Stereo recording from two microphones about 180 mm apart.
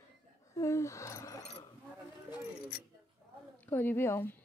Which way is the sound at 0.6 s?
15° left (ahead or behind).